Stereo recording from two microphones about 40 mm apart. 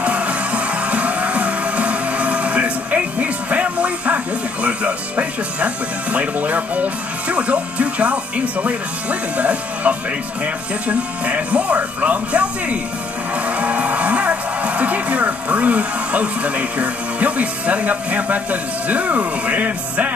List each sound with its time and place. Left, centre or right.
0.0 s music: right
6.1 s speech: right